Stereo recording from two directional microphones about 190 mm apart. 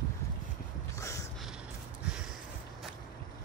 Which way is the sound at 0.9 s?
15° left (ahead or behind).